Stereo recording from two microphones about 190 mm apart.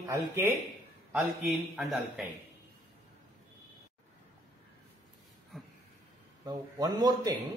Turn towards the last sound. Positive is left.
turn(degrees=-20)  # may be behind; listen again after turning